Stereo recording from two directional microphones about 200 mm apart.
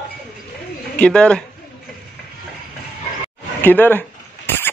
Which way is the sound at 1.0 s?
5° left (ahead or behind).